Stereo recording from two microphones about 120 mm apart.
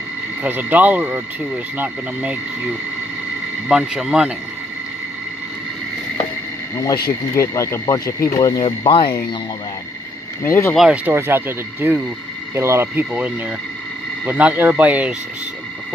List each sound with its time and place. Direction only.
0.4 s speech: 15° right (ahead or behind)
3.6 s speech: 5° right (ahead or behind)
6.8 s speech: 25° left (ahead or behind); by 9.1 s 40° left (ahead or behind)
10.4 s speech: 20° left (ahead or behind)
10.9 s speech: 15° right (ahead or behind)